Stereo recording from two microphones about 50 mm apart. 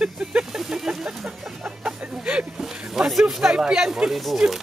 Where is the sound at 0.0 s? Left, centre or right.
Right.